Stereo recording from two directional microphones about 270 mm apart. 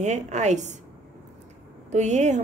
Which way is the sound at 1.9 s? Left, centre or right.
Right.